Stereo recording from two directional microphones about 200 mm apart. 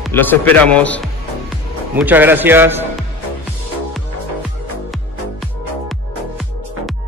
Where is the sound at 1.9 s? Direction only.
10° right (ahead or behind).